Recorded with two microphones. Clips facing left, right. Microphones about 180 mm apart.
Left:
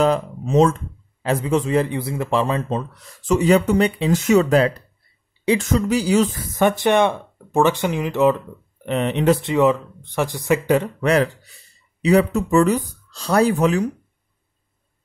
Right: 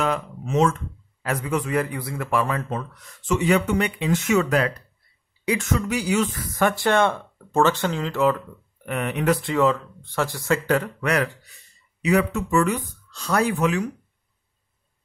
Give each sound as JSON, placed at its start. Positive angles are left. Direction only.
{"t": 0.0, "sound": "speech", "side_deg": 35}
{"t": 11.0, "sound": "speech", "side_deg": 30}